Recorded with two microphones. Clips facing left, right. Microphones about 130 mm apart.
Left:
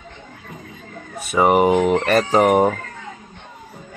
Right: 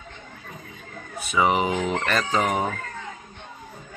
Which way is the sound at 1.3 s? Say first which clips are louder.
Left 7 dB; 55° left (ahead or behind).